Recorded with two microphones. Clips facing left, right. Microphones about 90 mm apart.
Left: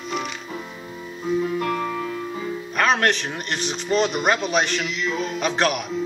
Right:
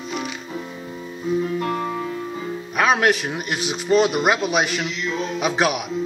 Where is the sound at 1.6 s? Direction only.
30° right (ahead or behind).